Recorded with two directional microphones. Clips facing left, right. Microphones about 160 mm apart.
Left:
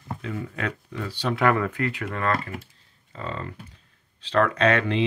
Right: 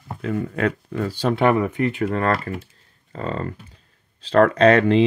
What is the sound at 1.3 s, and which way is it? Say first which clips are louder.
Speech: right 3 dB; 25° right (ahead or behind).